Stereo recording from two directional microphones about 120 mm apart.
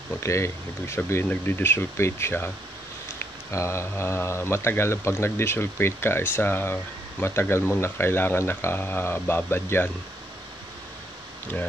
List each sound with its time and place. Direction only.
0.2 s speech: 25° left (ahead or behind)